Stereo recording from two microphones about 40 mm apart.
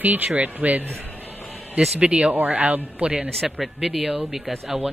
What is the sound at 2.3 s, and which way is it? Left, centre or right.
Speech, right.